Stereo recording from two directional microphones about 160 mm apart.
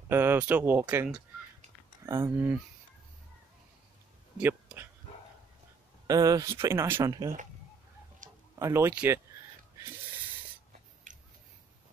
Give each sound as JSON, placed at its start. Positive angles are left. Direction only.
{"t": 0.1, "sound": "speech", "side_deg": -15}
{"t": 4.4, "sound": "a sound", "side_deg": -10}
{"t": 6.0, "sound": "speech", "side_deg": -25}
{"t": 8.2, "sound": "a sound", "side_deg": -55}
{"t": 8.5, "sound": "speech", "side_deg": -15}
{"t": 11.1, "sound": "chewing", "side_deg": -55}